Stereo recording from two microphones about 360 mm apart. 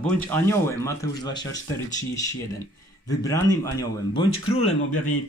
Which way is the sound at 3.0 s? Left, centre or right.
Centre.